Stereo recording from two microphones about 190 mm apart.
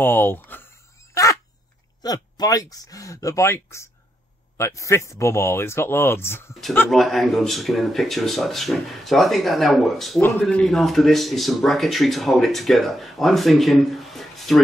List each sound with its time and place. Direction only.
0.0 s speech: 10° left (ahead or behind)
2.0 s speech: 20° left (ahead or behind); by 14.6 s centre (ahead or behind)